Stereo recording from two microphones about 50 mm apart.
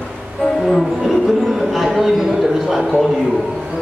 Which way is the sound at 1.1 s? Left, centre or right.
Centre.